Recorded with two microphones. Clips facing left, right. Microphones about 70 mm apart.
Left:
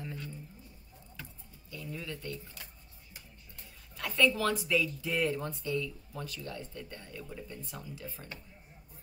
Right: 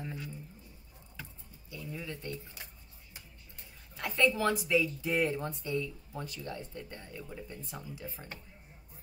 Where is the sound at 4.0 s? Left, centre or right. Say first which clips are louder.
Even; right.